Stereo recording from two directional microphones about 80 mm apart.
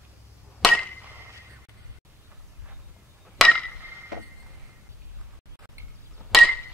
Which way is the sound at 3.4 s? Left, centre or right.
Centre.